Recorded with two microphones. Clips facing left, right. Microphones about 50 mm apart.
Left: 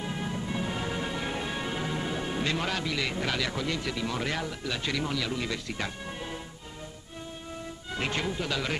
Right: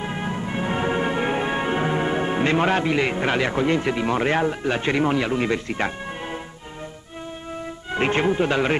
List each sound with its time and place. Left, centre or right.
0.0 s music: right
7.9 s speech: right